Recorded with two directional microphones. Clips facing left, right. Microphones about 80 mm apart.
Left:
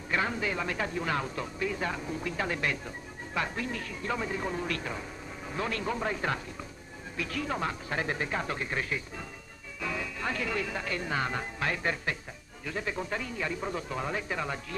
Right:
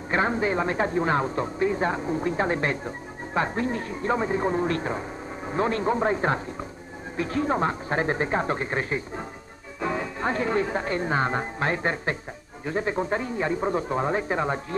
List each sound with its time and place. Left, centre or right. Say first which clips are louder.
0.1 s speech: right 7 dB; right